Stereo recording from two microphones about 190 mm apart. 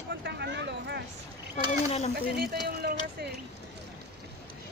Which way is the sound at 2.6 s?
55° right (ahead or behind).